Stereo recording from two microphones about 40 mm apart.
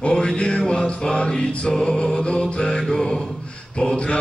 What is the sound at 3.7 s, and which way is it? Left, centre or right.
Mantra, centre.